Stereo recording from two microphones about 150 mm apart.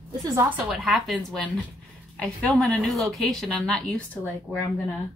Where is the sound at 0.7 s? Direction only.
Centre (ahead or behind).